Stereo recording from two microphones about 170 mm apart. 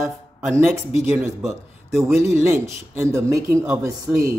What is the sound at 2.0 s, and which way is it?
Speech, 15° right (ahead or behind).